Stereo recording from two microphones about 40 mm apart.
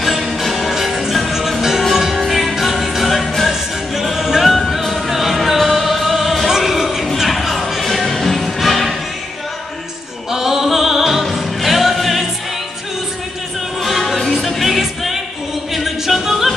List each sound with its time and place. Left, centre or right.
0.0 s music: centre
10.3 s music: centre
13.8 s music: centre